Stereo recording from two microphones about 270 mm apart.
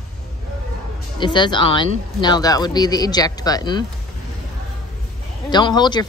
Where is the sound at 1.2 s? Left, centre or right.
Centre.